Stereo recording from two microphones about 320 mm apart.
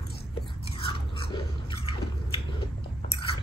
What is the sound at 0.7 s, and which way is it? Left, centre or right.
Biting, centre.